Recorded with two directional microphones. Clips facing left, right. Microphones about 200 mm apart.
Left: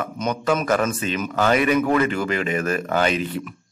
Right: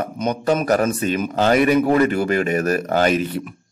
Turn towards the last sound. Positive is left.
turn(degrees=-40)  # may be behind; listen again after turning